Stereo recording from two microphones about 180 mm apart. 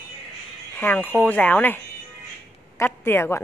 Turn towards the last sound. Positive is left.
turn(degrees=15)  # may be behind; listen again after turning